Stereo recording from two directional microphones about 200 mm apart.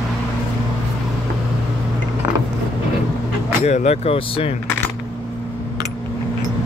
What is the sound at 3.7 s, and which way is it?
Speech, 35° left (ahead or behind).